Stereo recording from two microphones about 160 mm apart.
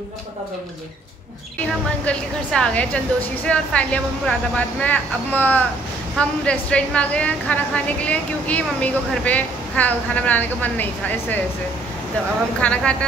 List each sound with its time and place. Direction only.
2.0 s a woman's voice: 5° left (ahead or behind)
12.5 s a woman's voice: 5° left (ahead or behind)